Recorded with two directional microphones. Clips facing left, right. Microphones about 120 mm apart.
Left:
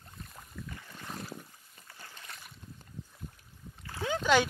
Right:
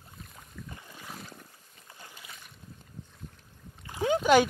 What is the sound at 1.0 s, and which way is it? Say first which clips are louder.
Boat: left 4 dB; centre (ahead or behind).